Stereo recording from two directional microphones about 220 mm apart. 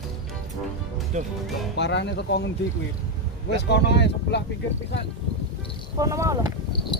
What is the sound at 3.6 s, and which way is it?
Speech, 50° left (ahead or behind).